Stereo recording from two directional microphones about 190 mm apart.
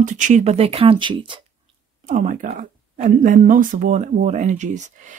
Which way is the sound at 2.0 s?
40° right (ahead or behind).